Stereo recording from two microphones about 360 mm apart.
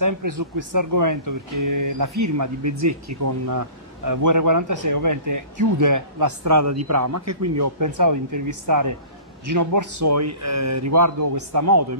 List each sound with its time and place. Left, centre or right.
0.0 s a man's voice: right